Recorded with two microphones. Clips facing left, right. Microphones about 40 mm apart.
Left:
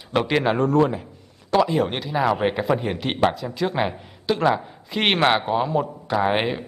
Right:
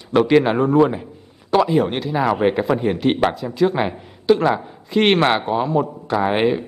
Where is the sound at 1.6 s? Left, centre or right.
Centre.